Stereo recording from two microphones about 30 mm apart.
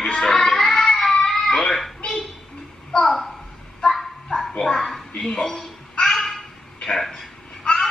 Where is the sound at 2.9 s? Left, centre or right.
Left.